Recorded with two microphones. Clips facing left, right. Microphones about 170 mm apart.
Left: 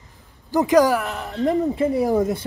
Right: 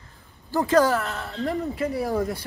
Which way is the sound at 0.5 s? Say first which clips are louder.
Left 4 dB; 15° left (ahead or behind).